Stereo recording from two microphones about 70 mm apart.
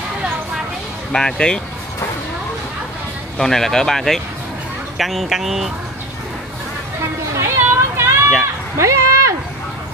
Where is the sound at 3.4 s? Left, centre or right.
Centre.